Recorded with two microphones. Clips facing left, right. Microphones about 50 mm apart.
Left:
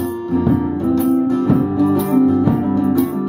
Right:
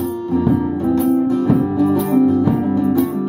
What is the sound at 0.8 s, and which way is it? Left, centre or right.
Music, centre.